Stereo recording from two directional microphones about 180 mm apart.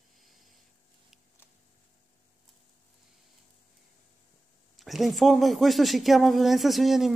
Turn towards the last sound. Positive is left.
turn(degrees=0)  # may be behind; listen again after turning